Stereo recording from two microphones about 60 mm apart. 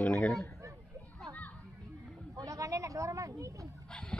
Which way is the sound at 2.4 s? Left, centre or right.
Right.